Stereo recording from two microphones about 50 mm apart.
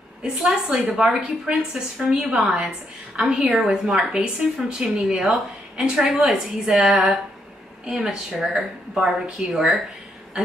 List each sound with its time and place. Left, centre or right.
0.2 s a woman's voice: centre
6.8 s a woman's voice: centre